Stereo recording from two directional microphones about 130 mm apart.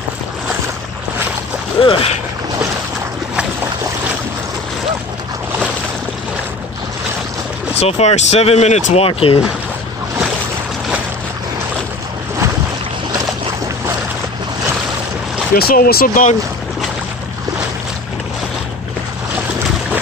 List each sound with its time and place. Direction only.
1.8 s speech: 45° left (ahead or behind)
7.7 s speech: 55° left (ahead or behind)
15.5 s speech: 90° left